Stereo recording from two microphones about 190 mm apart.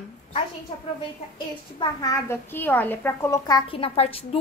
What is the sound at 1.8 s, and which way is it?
A child's voice, 20° left (ahead or behind).